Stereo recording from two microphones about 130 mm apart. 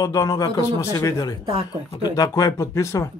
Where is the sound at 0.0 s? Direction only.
30° left (ahead or behind).